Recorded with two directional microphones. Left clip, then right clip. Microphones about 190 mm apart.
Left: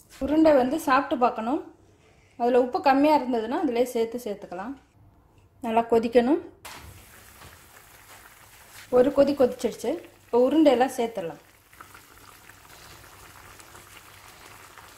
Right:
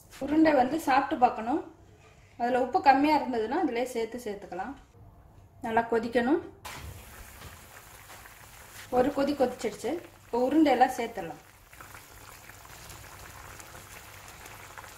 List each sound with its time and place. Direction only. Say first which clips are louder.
0.3 s a woman's voice: left 4 dB; 35° left (ahead or behind)
9.1 s a woman's voice: left 7 dB; 40° left (ahead or behind)